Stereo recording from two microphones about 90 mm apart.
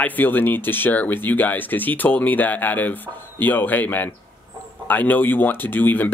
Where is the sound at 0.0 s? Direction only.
20° left (ahead or behind).